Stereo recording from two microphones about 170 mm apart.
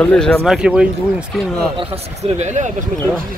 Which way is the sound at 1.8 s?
40° right (ahead or behind).